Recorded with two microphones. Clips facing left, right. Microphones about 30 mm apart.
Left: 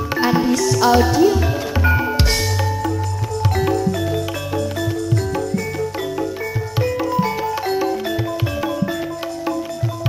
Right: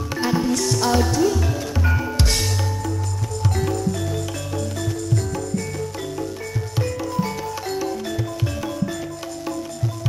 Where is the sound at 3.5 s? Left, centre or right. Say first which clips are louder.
Left 6 dB; left.